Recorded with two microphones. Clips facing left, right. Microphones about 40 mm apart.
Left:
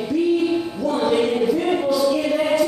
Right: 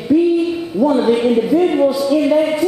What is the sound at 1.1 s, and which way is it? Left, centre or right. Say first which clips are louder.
Speech: right 4 dB; centre.